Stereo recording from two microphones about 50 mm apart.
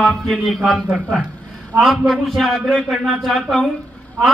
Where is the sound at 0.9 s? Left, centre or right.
Right.